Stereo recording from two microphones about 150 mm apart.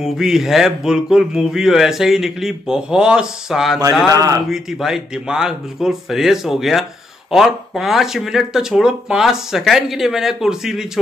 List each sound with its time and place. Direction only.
0.0 s speech: 5° right (ahead or behind)
4.1 s speech: 25° right (ahead or behind)
4.5 s speech: centre (ahead or behind)